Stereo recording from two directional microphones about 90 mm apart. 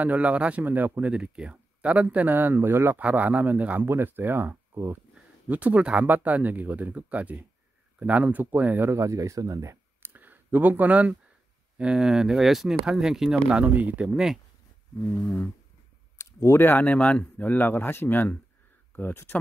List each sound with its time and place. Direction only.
0.0 s speech: 15° right (ahead or behind); by 10.1 s 35° right (ahead or behind)
10.1 s speech: 20° right (ahead or behind)
13.7 s speech: 15° right (ahead or behind)
15.2 s a sound: 15° left (ahead or behind)
16.2 s speech: 30° left (ahead or behind)